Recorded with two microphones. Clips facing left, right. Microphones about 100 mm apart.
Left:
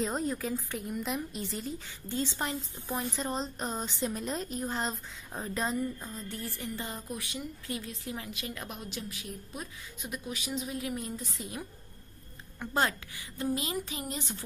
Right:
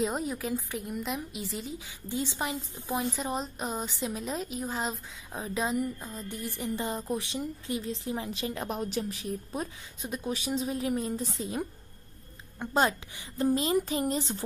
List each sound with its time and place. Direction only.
0.0 s a woman's voice: 5° right (ahead or behind)
2.0 s a woman's voice: 15° right (ahead or behind)
6.2 s music: 20° right (ahead or behind)
7.1 s a woman's voice: 30° right (ahead or behind)
12.5 s speech: 20° right (ahead or behind)
13.4 s a woman's voice: 35° right (ahead or behind)